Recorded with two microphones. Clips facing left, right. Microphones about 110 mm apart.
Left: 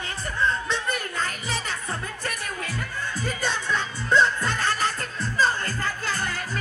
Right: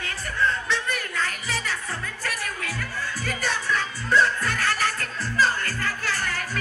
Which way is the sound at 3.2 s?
25° left (ahead or behind).